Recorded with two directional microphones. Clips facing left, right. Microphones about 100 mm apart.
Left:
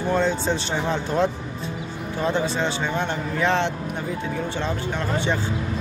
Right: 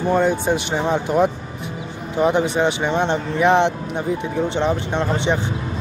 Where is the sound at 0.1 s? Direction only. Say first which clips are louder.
Right 4 dB; 15° right (ahead or behind).